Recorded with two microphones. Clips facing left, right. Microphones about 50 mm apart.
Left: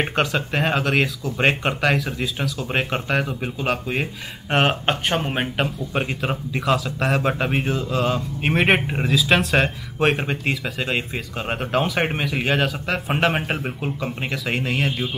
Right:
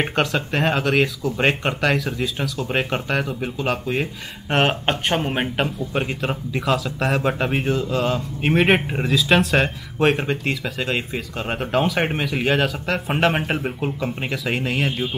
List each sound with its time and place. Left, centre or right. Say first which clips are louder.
0.0 s speech: even; centre